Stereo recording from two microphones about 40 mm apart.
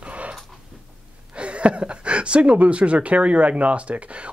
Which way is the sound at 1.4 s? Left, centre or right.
Right.